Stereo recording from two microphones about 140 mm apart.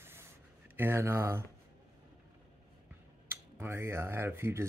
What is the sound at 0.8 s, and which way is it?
Speech, 15° right (ahead or behind).